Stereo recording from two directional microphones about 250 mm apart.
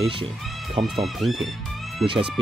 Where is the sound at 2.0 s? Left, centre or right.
Right.